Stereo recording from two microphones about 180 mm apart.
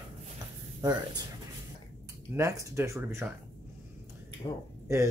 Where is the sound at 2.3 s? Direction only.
15° right (ahead or behind).